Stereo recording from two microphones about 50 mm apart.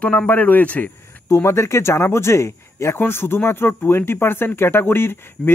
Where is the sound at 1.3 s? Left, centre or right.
Left.